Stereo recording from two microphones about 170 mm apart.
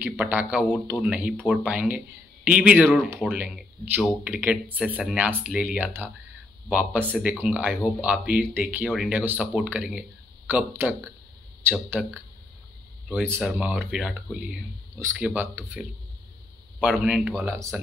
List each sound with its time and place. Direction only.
0.0 s speech: 5° right (ahead or behind)
13.3 s speech: 5° right (ahead or behind)
15.0 s speech: 15° right (ahead or behind)